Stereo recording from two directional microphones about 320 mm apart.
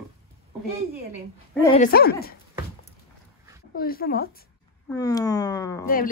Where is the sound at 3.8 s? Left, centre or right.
Left.